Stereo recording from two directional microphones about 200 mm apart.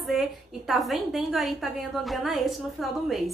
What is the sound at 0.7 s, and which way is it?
A woman's voice, centre (ahead or behind).